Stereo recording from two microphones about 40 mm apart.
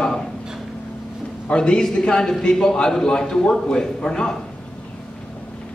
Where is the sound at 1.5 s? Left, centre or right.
Left.